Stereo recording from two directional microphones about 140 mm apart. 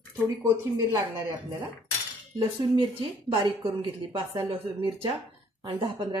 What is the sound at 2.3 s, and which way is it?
A woman's voice, 35° right (ahead or behind).